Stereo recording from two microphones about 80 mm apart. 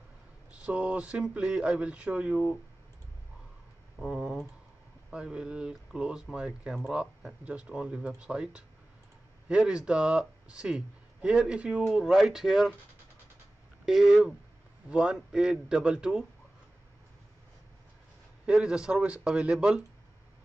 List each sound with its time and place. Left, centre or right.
0.5 s speech: centre
4.0 s speech: centre
13.8 s speech: centre
18.4 s speech: centre